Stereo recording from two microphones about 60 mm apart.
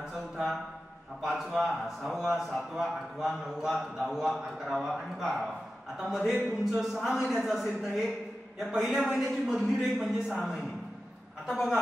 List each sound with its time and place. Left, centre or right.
1.2 s a man's voice: centre